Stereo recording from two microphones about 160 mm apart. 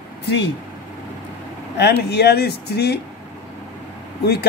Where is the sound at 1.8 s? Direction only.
90° left.